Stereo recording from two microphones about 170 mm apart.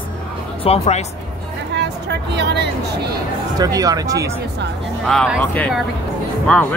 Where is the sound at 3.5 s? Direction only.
20° right (ahead or behind).